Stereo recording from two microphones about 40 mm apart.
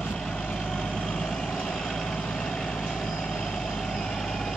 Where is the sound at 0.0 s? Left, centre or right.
Centre.